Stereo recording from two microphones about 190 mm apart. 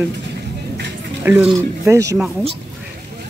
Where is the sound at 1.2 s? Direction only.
10° right (ahead or behind).